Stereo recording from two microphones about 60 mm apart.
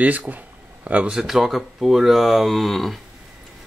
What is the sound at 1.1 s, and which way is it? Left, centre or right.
Speech, centre.